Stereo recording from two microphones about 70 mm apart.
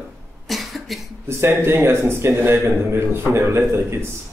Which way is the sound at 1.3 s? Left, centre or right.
Right.